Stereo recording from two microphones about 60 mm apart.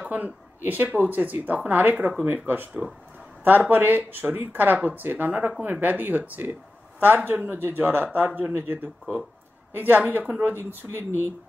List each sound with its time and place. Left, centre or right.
0.1 s speech: right
3.7 s speech: right